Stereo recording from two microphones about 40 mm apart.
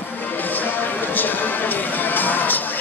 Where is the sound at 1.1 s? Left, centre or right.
Left.